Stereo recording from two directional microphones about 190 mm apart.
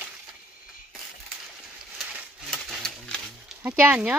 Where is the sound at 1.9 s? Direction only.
Centre (ahead or behind).